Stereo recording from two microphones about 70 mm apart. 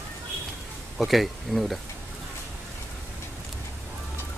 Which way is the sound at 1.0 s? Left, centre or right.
Centre.